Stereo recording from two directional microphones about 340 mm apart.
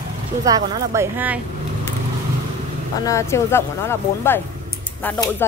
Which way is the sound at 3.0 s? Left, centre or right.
Centre.